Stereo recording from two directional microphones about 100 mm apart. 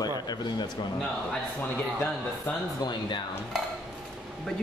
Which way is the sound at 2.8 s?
50° left (ahead or behind).